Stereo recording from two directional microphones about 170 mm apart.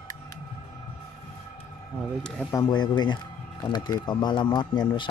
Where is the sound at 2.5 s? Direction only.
25° left (ahead or behind).